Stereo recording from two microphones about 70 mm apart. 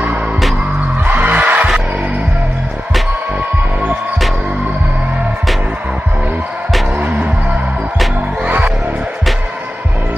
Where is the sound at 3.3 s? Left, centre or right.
Right.